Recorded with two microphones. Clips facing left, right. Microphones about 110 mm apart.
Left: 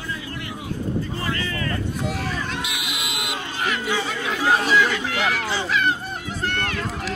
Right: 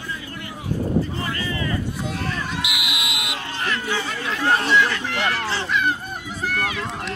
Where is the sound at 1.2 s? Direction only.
25° right (ahead or behind).